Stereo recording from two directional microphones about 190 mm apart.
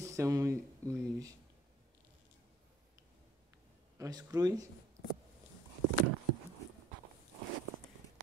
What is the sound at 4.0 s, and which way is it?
Speech, 20° right (ahead or behind).